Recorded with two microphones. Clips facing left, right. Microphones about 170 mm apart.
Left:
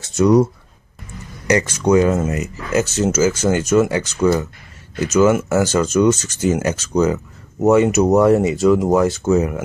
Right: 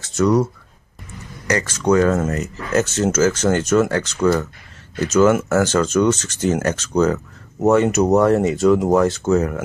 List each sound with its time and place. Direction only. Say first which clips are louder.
0.0 s speech: left 3 dB; 15° left (ahead or behind)
1.8 s speech: even; 10° left (ahead or behind)